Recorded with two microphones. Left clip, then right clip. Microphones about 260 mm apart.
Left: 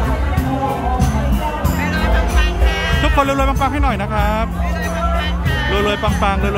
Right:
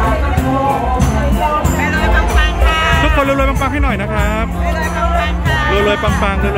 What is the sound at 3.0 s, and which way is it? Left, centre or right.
Speech, centre.